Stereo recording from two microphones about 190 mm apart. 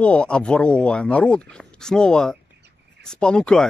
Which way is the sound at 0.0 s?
5° left (ahead or behind).